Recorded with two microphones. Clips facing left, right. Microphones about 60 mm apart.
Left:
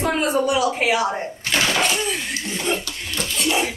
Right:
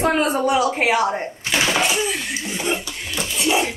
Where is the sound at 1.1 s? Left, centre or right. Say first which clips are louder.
Right 1 dB; centre.